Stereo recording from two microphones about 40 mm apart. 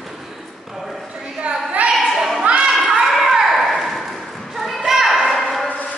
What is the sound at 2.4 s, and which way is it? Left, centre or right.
Children playing, right.